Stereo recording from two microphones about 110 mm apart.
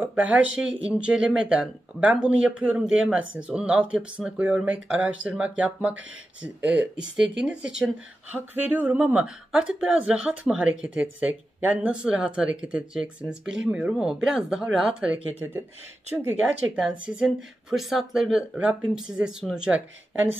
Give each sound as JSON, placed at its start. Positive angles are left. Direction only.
{"t": 0.0, "sound": "speech", "side_deg": -15}